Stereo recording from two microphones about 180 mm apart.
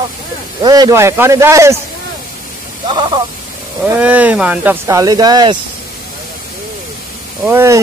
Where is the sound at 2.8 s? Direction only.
25° right (ahead or behind).